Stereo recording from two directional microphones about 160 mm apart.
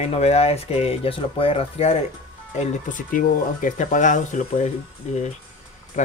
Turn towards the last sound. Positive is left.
turn(degrees=50)  # may be behind; listen again after turning